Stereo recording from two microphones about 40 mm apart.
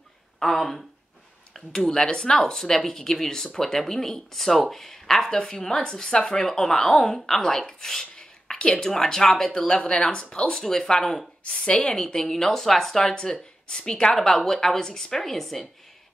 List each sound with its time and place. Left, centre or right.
0.4 s speech: centre
8.5 s speech: left; by 15.6 s centre